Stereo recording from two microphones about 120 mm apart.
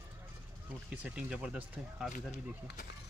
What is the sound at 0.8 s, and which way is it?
Speech, 10° right (ahead or behind).